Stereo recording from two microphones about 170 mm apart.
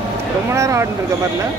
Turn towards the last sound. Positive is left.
turn(degrees=-15)  # may be behind; listen again after turning